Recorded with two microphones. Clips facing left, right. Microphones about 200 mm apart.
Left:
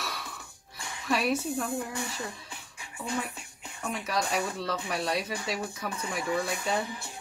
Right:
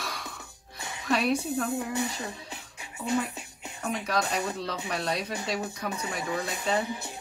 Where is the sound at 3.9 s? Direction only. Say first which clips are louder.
Right 2 dB; centre (ahead or behind).